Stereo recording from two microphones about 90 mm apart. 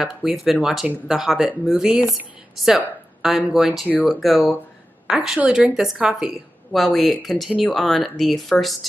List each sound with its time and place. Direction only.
0.0 s a woman's voice: 5° right (ahead or behind)